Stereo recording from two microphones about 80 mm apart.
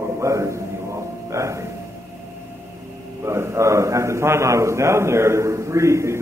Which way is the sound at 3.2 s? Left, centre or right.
Right.